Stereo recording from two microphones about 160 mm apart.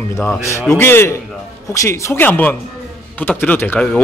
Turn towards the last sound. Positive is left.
turn(degrees=5)  # may be behind; listen again after turning